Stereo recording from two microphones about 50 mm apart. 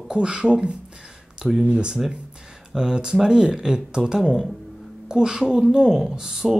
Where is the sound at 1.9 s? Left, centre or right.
Centre.